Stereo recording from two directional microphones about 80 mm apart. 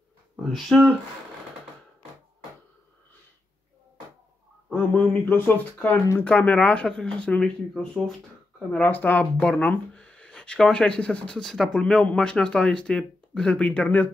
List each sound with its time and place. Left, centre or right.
0.4 s speech: centre
4.6 s speech: centre
8.7 s speech: left